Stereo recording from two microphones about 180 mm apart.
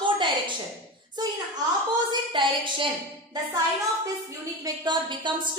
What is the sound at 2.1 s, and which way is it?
Speech, 30° right (ahead or behind).